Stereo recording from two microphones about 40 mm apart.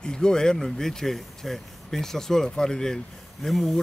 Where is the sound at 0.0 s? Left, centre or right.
Centre.